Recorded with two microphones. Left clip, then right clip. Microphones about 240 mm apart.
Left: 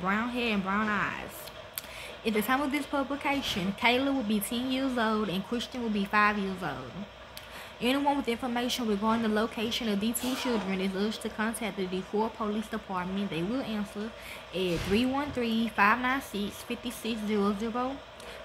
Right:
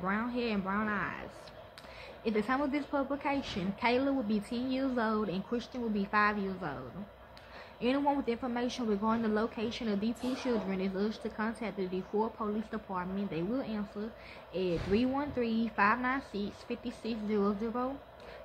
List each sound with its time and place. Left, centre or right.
0.0 s speech: left
2.2 s speech: left
7.8 s speech: centre